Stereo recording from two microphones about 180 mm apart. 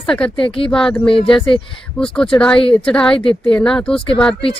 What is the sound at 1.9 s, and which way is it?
Speech, 5° left (ahead or behind).